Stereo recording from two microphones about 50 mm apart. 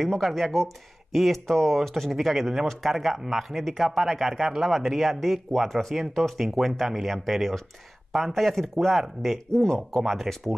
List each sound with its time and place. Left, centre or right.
0.0 s speech: centre
9.5 s speech: centre
9.8 s speech: centre